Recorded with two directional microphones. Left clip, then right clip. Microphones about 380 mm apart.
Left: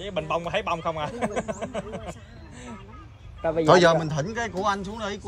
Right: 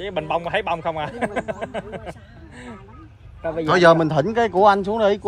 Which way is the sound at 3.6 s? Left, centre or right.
Centre.